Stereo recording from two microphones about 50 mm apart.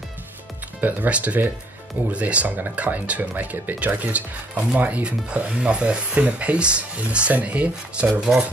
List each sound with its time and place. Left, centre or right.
0.7 s speech: right